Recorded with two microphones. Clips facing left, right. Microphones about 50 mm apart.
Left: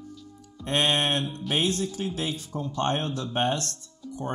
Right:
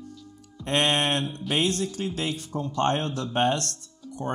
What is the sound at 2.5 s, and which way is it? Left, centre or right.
Speech, right.